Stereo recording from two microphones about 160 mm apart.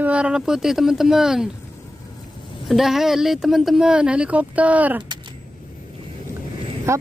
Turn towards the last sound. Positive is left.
turn(degrees=-15)  # may be behind; listen again after turning